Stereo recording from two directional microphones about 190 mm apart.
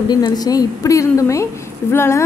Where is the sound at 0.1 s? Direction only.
20° left (ahead or behind).